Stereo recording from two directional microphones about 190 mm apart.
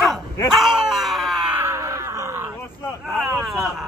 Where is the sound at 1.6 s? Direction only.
15° right (ahead or behind).